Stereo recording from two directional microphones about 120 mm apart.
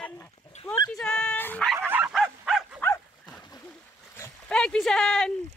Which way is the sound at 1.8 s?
15° right (ahead or behind).